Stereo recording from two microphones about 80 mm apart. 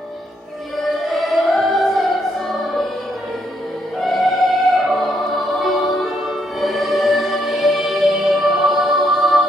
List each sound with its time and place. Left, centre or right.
1.0 s music: centre
4.0 s music: centre